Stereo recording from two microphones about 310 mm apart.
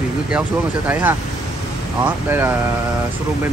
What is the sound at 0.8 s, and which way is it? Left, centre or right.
Speech, centre.